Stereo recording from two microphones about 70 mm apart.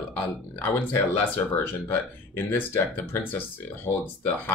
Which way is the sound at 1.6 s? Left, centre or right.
Left.